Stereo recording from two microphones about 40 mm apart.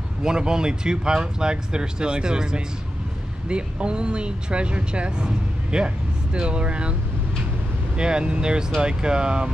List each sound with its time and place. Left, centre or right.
0.2 s speech: centre